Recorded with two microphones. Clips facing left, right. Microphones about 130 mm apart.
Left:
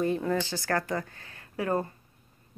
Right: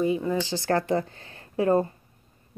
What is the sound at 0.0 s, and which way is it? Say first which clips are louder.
Speech: right 2 dB; 5° right (ahead or behind).